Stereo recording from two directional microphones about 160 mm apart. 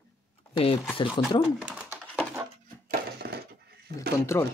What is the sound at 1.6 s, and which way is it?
Speech, 5° right (ahead or behind).